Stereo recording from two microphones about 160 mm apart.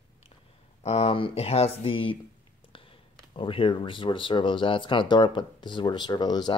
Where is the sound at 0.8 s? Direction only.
40° left (ahead or behind).